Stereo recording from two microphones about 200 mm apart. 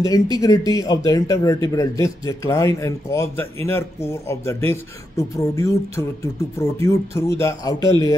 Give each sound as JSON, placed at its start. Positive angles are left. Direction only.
{"t": 0.0, "sound": "speech", "side_deg": 20}